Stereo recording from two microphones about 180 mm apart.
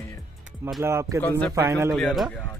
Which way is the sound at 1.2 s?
15° left (ahead or behind).